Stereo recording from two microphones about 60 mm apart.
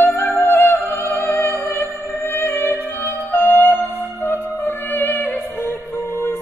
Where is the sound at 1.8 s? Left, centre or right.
Left.